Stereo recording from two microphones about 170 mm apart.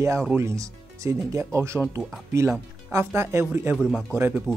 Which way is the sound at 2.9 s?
15° right (ahead or behind).